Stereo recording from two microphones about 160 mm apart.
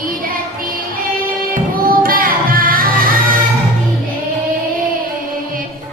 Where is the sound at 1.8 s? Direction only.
65° right (ahead or behind).